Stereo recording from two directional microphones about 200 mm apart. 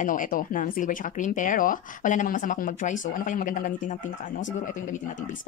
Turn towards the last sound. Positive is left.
turn(degrees=40)  # may be behind; listen again after turning